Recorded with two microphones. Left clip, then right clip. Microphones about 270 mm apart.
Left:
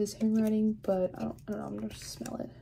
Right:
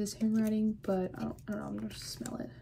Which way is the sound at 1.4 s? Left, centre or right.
Left.